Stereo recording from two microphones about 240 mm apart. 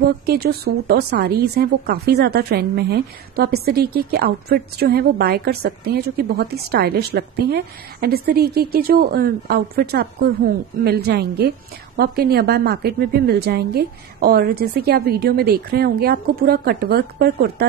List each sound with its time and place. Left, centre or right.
0.3 s speech: right